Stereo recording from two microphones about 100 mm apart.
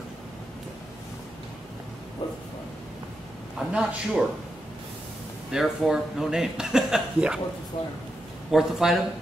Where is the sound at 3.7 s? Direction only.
10° right (ahead or behind).